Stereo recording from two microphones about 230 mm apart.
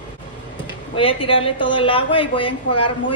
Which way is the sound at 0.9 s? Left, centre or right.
Left.